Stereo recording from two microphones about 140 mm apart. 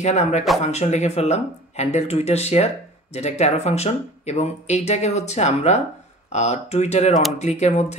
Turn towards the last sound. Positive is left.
turn(degrees=55)  # may be behind; listen again after turning